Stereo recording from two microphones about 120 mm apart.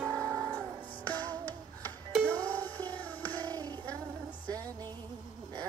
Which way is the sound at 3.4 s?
35° right (ahead or behind).